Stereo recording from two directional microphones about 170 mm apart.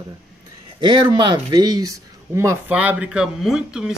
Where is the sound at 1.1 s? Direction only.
25° right (ahead or behind).